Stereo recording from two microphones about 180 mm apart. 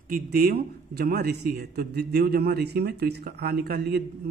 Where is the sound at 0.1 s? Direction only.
55° right (ahead or behind).